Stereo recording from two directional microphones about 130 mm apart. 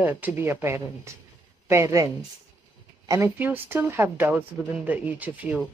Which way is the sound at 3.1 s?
20° right (ahead or behind).